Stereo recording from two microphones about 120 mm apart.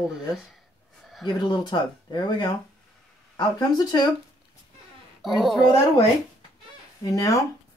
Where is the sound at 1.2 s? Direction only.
35° left (ahead or behind).